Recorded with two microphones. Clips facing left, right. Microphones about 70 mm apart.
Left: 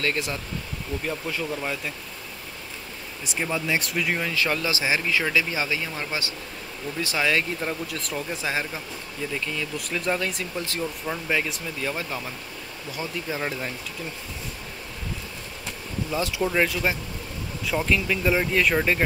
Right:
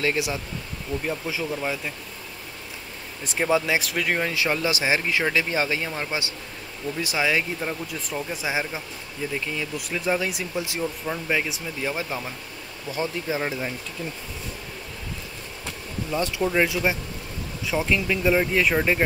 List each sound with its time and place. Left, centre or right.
0.0 s speech: centre
3.3 s speech: right
4.3 s speech: centre
7.8 s speech: centre
9.3 s speech: centre
9.8 s speech: centre
11.8 s speech: centre
13.3 s speech: centre
16.1 s speech: centre